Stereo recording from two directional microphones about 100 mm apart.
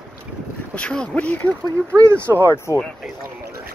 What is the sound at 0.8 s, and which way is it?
Speech, 10° left (ahead or behind).